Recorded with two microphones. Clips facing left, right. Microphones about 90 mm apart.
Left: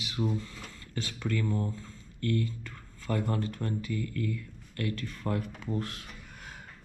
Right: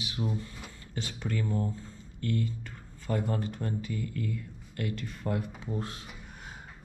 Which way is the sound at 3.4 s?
20° right (ahead or behind).